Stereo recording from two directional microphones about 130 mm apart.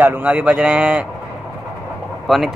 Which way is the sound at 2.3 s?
Centre (ahead or behind).